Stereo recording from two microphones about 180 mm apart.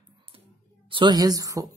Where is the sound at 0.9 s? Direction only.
25° right (ahead or behind).